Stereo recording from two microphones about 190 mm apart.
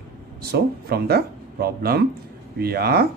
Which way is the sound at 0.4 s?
55° right (ahead or behind).